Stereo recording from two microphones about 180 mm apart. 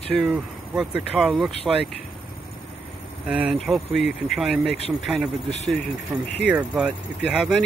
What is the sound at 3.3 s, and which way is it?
Speech, 5° right (ahead or behind).